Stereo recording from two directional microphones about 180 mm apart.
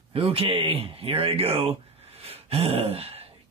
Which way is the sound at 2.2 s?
35° right (ahead or behind).